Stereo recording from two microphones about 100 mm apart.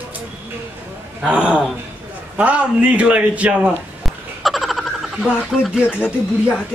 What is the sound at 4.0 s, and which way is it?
Frog, centre (ahead or behind).